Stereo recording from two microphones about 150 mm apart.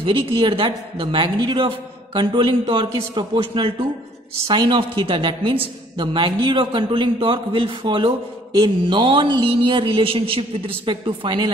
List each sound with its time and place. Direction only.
0.0 s a woman's voice: 35° right (ahead or behind)